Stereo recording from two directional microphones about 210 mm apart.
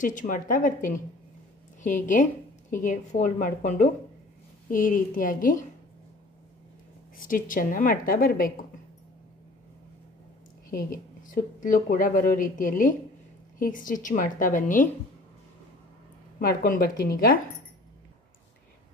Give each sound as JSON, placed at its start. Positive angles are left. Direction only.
{"t": 0.0, "sound": "a woman's voice", "side_deg": 40}
{"t": 2.7, "sound": "a woman's voice", "side_deg": 40}
{"t": 7.2, "sound": "a woman's voice", "side_deg": 40}
{"t": 10.7, "sound": "a woman's voice", "side_deg": 45}
{"t": 16.3, "sound": "a woman's voice", "side_deg": 45}